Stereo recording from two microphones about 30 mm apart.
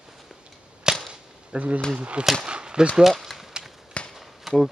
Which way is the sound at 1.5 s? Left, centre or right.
Right.